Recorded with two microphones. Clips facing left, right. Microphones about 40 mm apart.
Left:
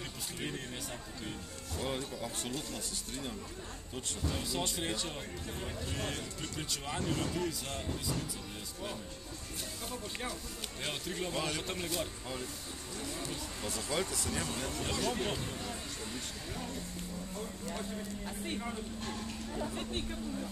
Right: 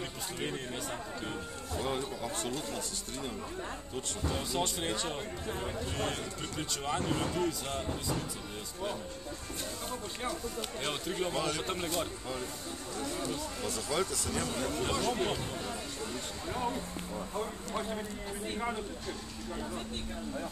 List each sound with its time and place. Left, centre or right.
1.8 s speech: centre
4.3 s speech: centre
10.8 s speech: centre
11.3 s speech: centre
16.5 s speech: right
17.7 s speech: right